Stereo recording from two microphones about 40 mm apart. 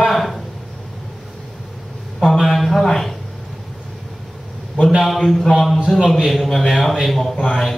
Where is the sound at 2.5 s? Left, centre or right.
Centre.